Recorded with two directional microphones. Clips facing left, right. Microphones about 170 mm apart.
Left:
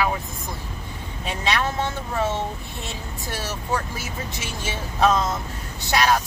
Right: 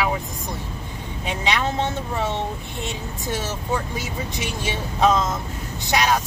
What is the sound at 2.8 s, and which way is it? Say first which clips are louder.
Speech: right 5 dB; 20° right (ahead or behind).